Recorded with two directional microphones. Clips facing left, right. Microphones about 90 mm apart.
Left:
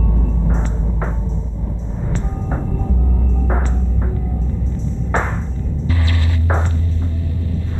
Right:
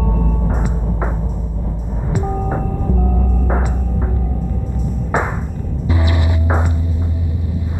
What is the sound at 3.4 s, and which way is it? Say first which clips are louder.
Music: right 2 dB; 10° right (ahead or behind).